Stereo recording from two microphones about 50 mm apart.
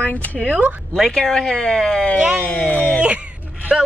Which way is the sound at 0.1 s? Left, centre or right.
Left.